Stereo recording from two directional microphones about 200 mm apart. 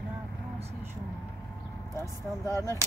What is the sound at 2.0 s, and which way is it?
Speech, 15° left (ahead or behind).